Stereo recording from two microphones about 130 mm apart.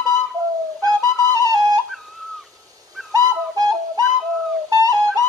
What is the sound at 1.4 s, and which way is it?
Flute, 25° right (ahead or behind).